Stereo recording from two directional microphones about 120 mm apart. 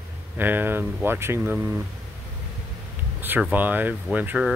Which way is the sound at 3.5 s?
15° right (ahead or behind).